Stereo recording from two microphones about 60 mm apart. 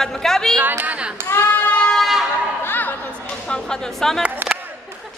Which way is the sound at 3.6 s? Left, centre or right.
Centre.